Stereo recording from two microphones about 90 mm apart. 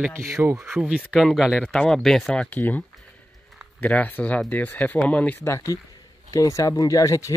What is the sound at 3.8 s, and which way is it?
Speech, 15° left (ahead or behind).